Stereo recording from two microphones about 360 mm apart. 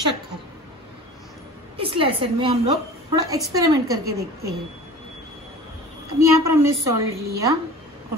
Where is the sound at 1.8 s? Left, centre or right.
Centre.